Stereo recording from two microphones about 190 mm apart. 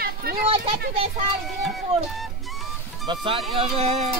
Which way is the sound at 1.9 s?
30° right (ahead or behind).